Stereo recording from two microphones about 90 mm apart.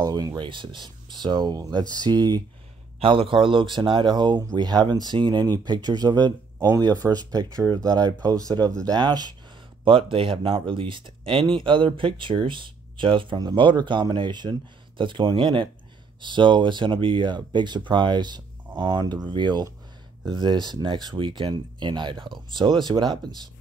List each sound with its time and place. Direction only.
0.0 s speech: 40° right (ahead or behind)
0.4 s speech: 65° right (ahead or behind); by 2.4 s 50° right (ahead or behind)
3.0 s speech: 80° right; by 9.3 s 50° right (ahead or behind)
9.8 s speech: 75° right (ahead or behind); by 23.4 s 55° right (ahead or behind)